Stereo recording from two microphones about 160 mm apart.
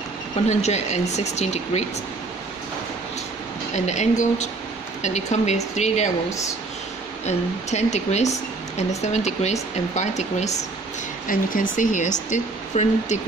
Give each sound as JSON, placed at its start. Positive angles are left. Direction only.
{"t": 0.5, "sound": "speech", "side_deg": 45}
{"t": 3.7, "sound": "speech", "side_deg": 45}
{"t": 7.2, "sound": "speech", "side_deg": 45}
{"t": 11.2, "sound": "speech", "side_deg": 55}